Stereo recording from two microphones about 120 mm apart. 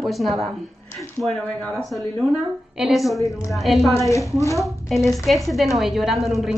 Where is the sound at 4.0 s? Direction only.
25° left (ahead or behind).